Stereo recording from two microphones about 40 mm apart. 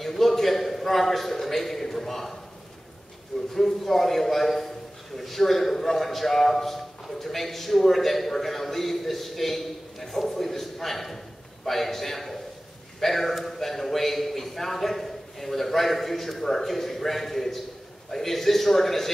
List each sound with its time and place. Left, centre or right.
0.0 s a man's voice: centre
3.5 s a man's voice: centre